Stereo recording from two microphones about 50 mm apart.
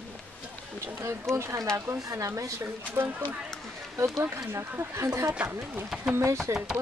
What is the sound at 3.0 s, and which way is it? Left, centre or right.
Speech, right.